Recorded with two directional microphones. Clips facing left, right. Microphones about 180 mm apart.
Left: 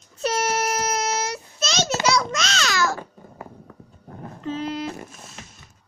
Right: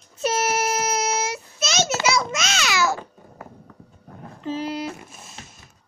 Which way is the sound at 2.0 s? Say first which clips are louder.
Left 1 dB; 5° right (ahead or behind).